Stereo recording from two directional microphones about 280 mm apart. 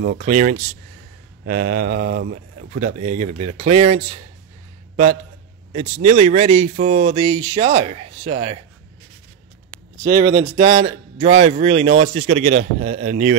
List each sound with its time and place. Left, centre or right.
0.0 s a man's voice: right
6.0 s a man's voice: right
10.0 s a man's voice: centre